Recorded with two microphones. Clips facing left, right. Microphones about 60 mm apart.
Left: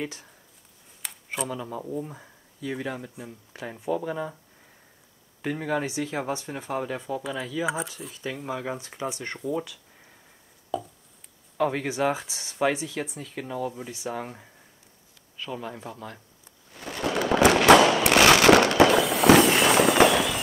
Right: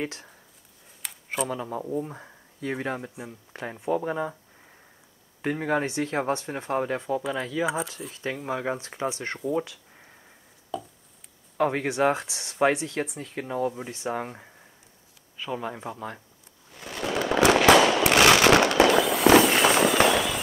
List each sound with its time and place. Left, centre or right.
1.0 s a sound: centre
1.6 s speech: centre
2.6 s speech: right
3.2 s speech: centre
3.9 s speech: centre
5.4 s speech: centre
8.5 s speech: centre
10.7 s chopping: centre
11.5 s speech: centre
11.9 s speech: centre
16.7 s fireworks: centre